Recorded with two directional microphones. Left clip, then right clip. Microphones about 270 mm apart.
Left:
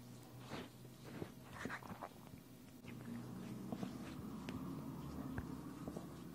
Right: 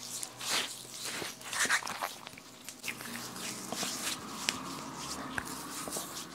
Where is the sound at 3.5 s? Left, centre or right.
Centre.